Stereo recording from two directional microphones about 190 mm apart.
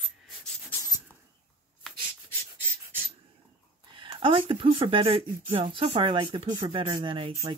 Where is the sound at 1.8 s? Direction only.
Centre (ahead or behind).